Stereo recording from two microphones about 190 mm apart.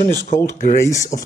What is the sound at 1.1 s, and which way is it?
Speech, 50° left (ahead or behind).